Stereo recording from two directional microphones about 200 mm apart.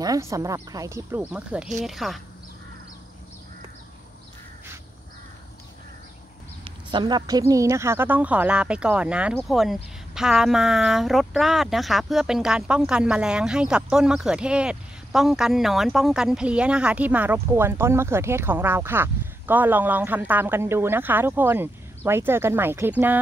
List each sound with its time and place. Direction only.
0.0 s a woman's voice: 15° right (ahead or behind); by 2.2 s centre (ahead or behind)
6.6 s a woman's voice: 25° right (ahead or behind)